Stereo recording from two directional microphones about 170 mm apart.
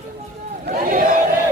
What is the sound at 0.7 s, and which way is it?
Crowd, 50° right (ahead or behind).